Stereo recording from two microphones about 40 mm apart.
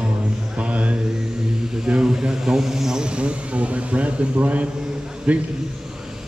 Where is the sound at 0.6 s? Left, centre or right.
Right; by 3.0 s centre.